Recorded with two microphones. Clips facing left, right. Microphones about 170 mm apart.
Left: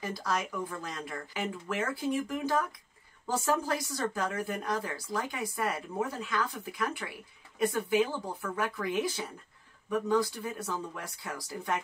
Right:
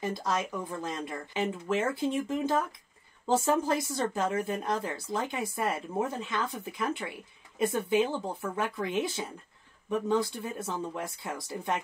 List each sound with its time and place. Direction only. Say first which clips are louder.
0.0 s speech: right 2 dB; 25° right (ahead or behind)